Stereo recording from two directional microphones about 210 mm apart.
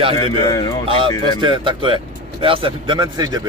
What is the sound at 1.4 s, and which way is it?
Speech, 25° right (ahead or behind).